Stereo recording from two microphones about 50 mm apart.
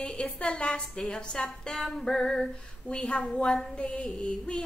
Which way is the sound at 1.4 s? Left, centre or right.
Centre.